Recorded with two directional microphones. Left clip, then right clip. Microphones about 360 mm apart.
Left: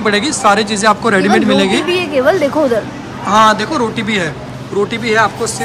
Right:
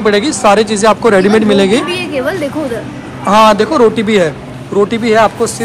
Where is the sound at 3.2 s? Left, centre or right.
Centre.